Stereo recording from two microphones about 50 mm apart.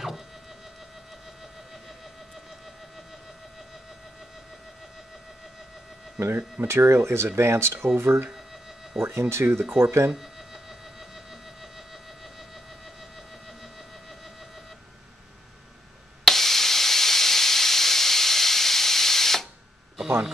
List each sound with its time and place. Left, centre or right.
6.2 s speech: centre
6.7 s speech: right
10.1 s a sound: centre
16.3 s steam: centre